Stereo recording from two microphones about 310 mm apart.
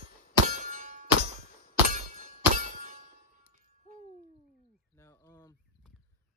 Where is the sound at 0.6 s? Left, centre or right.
Right.